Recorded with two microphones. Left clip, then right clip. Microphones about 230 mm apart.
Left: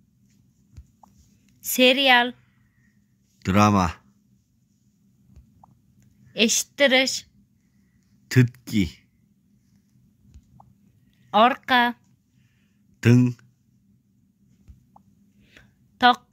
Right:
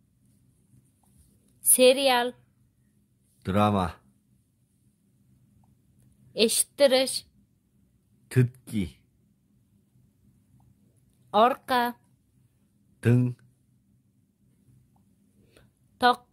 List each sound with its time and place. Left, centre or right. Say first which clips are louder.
1.7 s speech: left 3 dB; centre
3.4 s speech: left 5 dB; centre
6.3 s speech: left 3 dB; centre
8.3 s speech: left 6 dB; left
11.2 s speech: left 4 dB; centre
13.0 s speech: left 6 dB; centre
15.4 s a sound: left 8 dB; centre